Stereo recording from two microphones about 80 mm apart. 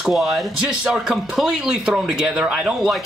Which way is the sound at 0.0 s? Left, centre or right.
Centre.